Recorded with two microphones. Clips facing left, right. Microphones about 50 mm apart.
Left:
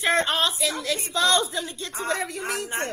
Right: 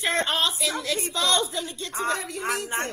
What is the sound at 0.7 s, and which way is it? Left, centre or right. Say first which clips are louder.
Speech: even; right.